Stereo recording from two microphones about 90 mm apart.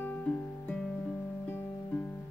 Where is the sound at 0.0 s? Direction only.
20° left (ahead or behind).